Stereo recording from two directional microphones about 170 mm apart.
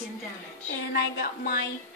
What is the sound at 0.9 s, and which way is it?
Speech, 70° left (ahead or behind).